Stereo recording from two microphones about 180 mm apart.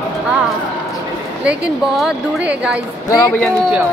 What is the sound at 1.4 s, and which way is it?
A woman's voice, 5° right (ahead or behind).